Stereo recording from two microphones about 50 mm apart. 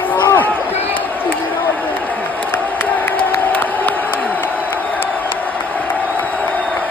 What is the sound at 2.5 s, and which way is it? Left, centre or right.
Crowd, left.